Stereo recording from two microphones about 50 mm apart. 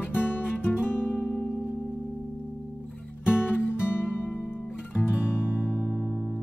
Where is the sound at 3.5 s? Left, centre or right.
Centre.